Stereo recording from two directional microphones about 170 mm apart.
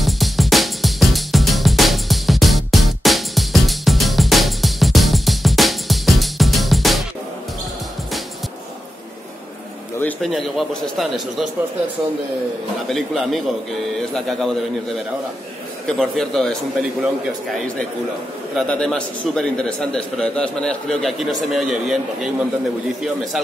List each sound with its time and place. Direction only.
0.0 s music: centre (ahead or behind)
9.9 s a man's voice: 5° left (ahead or behind)
12.8 s a man's voice: centre (ahead or behind)
16.0 s a man's voice: centre (ahead or behind)
18.6 s a man's voice: 5° left (ahead or behind)